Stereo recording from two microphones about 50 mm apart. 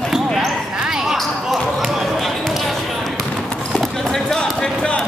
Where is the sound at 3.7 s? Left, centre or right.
Centre.